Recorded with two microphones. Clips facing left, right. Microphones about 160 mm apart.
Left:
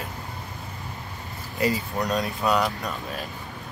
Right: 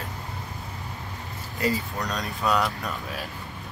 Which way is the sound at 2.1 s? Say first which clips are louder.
Left 1 dB; centre (ahead or behind).